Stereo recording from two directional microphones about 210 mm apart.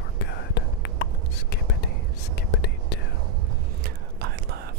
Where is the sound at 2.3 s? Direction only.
55° left (ahead or behind).